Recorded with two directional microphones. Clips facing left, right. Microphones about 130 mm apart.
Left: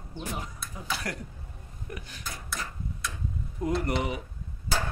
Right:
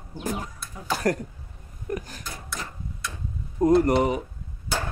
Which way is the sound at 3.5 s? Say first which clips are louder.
Right 10 dB; 40° right (ahead or behind).